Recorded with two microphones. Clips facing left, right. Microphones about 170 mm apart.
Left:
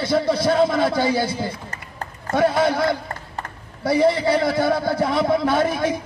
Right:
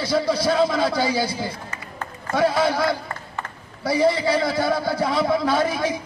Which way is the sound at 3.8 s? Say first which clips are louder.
Left 2 dB; 20° left (ahead or behind).